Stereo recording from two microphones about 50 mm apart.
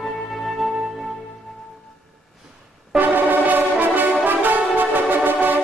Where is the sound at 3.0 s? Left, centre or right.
Right.